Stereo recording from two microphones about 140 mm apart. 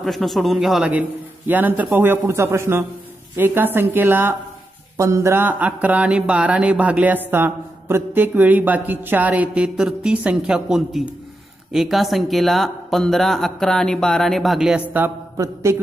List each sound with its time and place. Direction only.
0.0 s speech: centre (ahead or behind)
15.3 s mantra: 20° right (ahead or behind)